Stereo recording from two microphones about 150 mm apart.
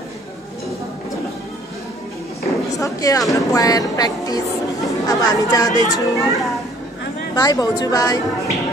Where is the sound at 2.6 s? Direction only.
20° left (ahead or behind).